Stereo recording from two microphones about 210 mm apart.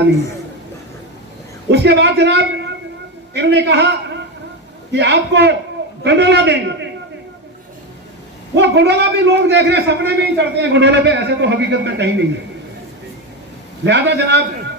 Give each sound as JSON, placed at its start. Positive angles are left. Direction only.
{"t": 1.7, "sound": "a man's voice", "side_deg": -55}
{"t": 4.9, "sound": "a man's voice", "side_deg": -55}
{"t": 8.5, "sound": "a man's voice", "side_deg": -55}
{"t": 13.8, "sound": "a man's voice", "side_deg": -55}